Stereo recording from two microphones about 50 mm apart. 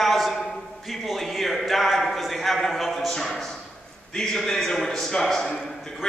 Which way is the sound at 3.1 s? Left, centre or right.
Centre.